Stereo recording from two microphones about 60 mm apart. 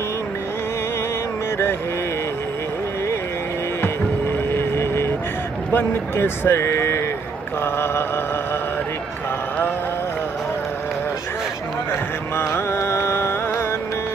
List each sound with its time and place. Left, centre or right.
4.5 s vehicle: left
5.7 s speech: left
7.6 s mantra: left
12.4 s music: left